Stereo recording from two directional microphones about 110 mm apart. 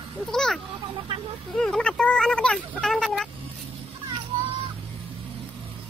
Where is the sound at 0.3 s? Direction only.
5° left (ahead or behind).